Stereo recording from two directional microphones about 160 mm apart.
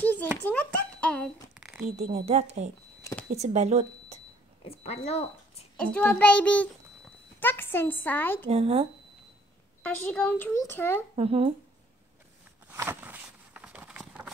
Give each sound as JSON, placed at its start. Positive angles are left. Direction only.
{"t": 0.0, "sound": "a sound", "side_deg": 10}
{"t": 0.4, "sound": "a woman's voice", "side_deg": 10}
{"t": 1.9, "sound": "a woman's voice", "side_deg": -45}
{"t": 4.6, "sound": "speech", "side_deg": 40}
{"t": 5.8, "sound": "a woman's voice", "side_deg": 5}
{"t": 8.5, "sound": "speech", "side_deg": -40}
{"t": 9.8, "sound": "a woman's voice", "side_deg": 10}
{"t": 11.1, "sound": "speech", "side_deg": -40}
{"t": 12.7, "sound": "a sound", "side_deg": -15}